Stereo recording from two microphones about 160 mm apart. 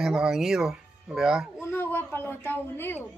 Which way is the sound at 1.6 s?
15° left (ahead or behind).